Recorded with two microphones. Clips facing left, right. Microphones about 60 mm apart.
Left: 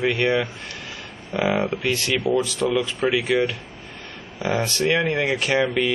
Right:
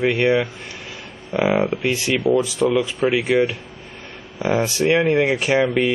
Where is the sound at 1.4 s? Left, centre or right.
Right.